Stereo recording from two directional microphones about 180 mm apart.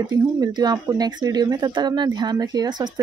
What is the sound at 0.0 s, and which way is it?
Speech, 25° right (ahead or behind).